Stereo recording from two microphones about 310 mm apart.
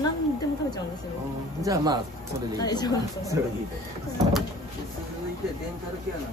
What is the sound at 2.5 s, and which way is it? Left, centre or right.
Speech, centre.